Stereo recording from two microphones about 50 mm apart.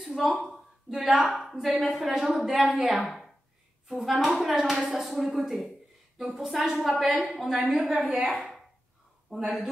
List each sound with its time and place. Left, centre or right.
0.1 s speech: centre
0.5 s a sound: centre
1.2 s speech: centre
7.9 s a woman's voice: right